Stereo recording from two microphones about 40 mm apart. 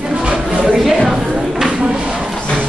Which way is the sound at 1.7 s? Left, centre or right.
Right.